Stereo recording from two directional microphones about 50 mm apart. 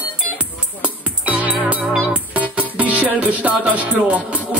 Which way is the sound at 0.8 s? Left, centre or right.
Right.